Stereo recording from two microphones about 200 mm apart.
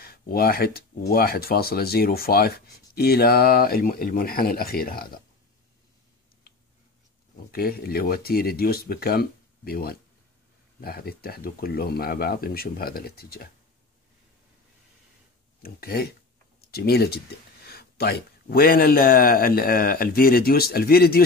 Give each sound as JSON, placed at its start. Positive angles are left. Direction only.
{"t": 0.0, "sound": "speech", "side_deg": 50}
{"t": 7.5, "sound": "speech", "side_deg": 50}
{"t": 15.6, "sound": "speech", "side_deg": 50}